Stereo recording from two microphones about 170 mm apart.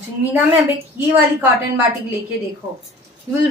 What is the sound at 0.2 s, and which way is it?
A woman's voice, 10° right (ahead or behind).